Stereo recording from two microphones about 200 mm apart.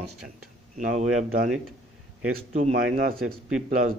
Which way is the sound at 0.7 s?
40° right (ahead or behind).